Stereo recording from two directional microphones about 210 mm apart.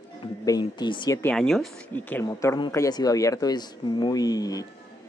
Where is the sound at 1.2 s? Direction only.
5° left (ahead or behind).